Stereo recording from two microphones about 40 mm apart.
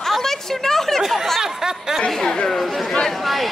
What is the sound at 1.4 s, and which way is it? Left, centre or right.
Speech, centre.